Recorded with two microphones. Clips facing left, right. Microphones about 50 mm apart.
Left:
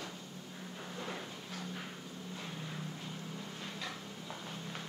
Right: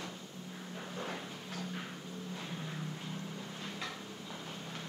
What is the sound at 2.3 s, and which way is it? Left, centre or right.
Vehicle, centre.